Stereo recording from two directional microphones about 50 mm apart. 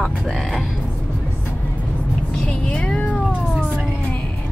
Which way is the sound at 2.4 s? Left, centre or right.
Left.